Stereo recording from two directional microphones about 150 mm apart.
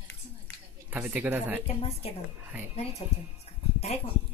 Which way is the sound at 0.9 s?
10° right (ahead or behind).